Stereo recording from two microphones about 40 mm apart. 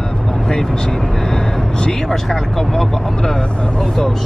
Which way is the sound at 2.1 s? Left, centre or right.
Centre.